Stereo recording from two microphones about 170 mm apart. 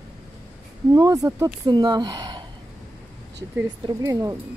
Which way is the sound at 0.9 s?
20° right (ahead or behind).